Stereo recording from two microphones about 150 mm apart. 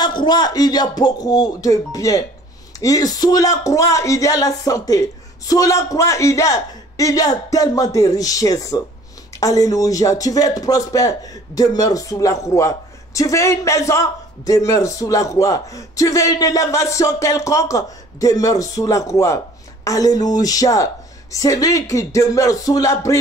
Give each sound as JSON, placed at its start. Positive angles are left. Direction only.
{"t": 0.0, "sound": "a man's voice", "side_deg": 30}